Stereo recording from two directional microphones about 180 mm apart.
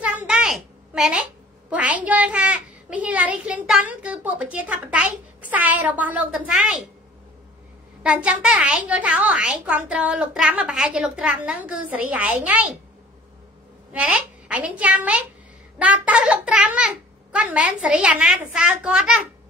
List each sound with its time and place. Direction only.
0.0 s a sound: 5° right (ahead or behind)
1.7 s a child's voice: 10° right (ahead or behind)
8.0 s a child's voice: 5° right (ahead or behind)
13.9 s a child's voice: 10° right (ahead or behind)